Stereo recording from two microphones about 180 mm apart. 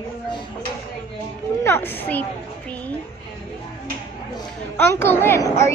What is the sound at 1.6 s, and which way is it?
Speech, 10° left (ahead or behind).